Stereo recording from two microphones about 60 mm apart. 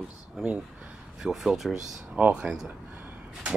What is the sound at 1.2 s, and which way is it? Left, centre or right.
Speech, centre.